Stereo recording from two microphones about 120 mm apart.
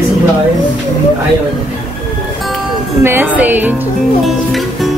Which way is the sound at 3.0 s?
20° right (ahead or behind).